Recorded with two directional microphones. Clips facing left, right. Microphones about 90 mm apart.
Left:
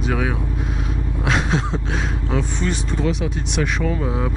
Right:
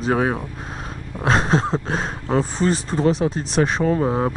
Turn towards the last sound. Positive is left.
turn(degrees=-40)  # may be behind; listen again after turning